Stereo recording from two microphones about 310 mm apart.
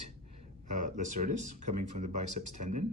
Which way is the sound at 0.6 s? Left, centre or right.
Right.